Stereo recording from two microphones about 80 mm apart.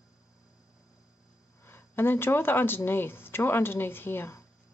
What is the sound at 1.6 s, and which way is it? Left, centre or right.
Speech, left.